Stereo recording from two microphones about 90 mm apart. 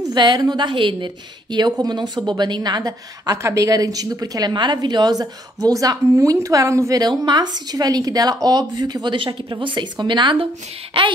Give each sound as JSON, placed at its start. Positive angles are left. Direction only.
{"t": 0.0, "sound": "a woman's voice", "side_deg": -55}
{"t": 7.0, "sound": "a woman's voice", "side_deg": -50}